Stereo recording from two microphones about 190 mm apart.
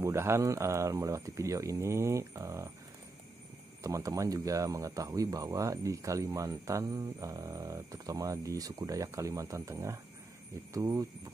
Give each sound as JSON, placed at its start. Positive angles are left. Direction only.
{"t": 0.0, "sound": "speech", "side_deg": -15}
{"t": 3.8, "sound": "speech", "side_deg": -15}